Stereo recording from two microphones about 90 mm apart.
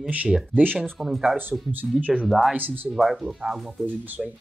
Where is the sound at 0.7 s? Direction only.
5° left (ahead or behind).